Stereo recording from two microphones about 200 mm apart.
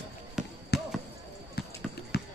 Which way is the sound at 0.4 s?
Centre (ahead or behind).